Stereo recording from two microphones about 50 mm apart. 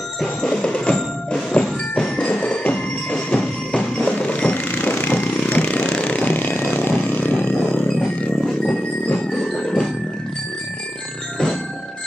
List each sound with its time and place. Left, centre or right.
0.5 s music: centre
4.3 s vehicle: left
8.5 s music: centre